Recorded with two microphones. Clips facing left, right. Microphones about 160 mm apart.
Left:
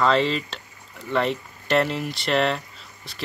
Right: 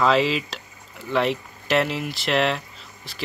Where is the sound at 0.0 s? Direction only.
5° right (ahead or behind).